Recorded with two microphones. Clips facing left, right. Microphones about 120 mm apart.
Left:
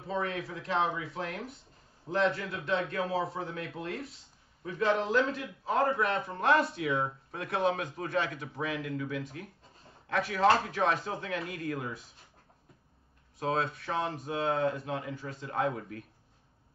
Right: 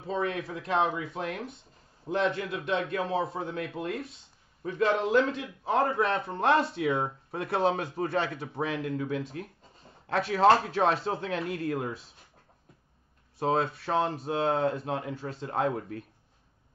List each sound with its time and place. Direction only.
0.0 s speech: 25° right (ahead or behind)
13.4 s speech: 30° right (ahead or behind)